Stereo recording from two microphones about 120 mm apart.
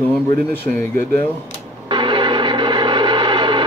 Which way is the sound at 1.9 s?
40° right (ahead or behind).